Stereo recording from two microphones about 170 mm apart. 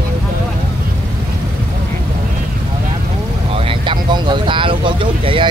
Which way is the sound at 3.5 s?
30° right (ahead or behind).